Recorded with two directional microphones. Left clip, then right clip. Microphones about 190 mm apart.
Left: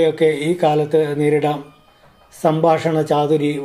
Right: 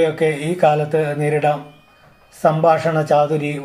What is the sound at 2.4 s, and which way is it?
Speech, 40° left (ahead or behind).